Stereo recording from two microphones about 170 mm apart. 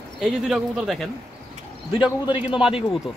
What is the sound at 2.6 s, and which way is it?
Speech, 30° left (ahead or behind).